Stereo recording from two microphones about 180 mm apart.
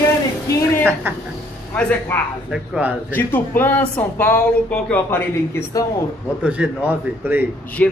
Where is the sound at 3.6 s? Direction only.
10° left (ahead or behind).